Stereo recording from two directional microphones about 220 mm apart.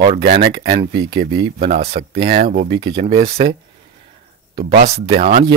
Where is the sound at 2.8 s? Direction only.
20° right (ahead or behind).